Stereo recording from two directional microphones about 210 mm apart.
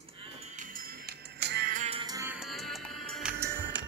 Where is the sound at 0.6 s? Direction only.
45° right (ahead or behind).